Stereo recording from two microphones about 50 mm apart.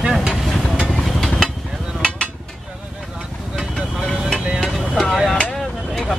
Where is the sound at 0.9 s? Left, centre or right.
Centre.